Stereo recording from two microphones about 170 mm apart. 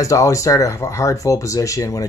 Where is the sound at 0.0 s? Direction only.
20° left (ahead or behind).